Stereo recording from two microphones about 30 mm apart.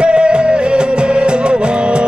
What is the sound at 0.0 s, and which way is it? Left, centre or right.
Music, right.